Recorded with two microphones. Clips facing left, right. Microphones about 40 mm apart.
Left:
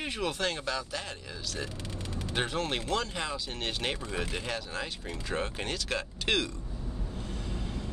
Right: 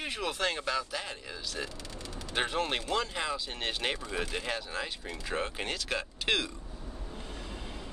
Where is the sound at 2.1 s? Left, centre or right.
Left.